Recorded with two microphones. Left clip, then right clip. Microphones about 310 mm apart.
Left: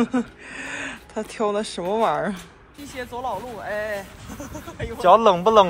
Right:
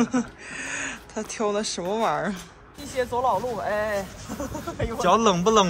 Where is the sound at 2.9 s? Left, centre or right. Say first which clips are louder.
Right 6 dB; right.